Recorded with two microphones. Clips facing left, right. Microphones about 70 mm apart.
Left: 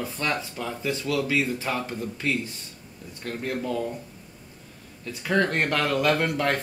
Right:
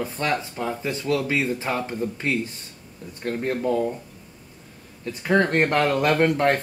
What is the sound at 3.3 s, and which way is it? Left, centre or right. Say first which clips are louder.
Speech: right 5 dB; right.